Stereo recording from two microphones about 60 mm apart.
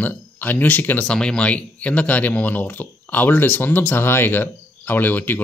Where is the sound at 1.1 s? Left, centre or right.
Centre; by 5.4 s left.